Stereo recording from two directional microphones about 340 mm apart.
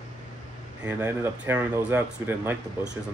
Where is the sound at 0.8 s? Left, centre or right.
Centre.